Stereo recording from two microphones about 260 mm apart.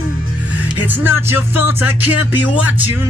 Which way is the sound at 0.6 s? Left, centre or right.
Centre.